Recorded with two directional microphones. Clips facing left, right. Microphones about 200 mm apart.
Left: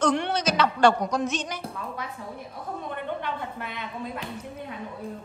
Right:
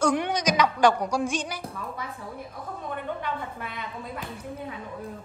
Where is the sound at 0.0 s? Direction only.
10° right (ahead or behind).